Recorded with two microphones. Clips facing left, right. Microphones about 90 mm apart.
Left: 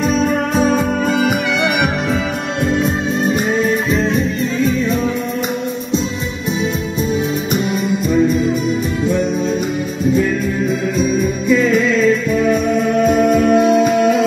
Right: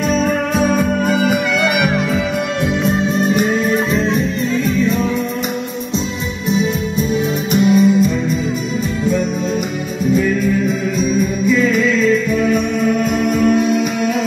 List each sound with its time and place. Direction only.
7.5 s music: 40° left (ahead or behind)
13.5 s music: 30° left (ahead or behind)